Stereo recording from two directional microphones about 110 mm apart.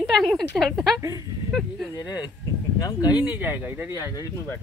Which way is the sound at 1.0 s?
30° right (ahead or behind).